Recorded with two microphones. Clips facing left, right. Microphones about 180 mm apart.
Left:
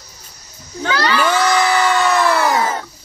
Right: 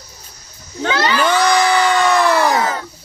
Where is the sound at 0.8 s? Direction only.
20° right (ahead or behind).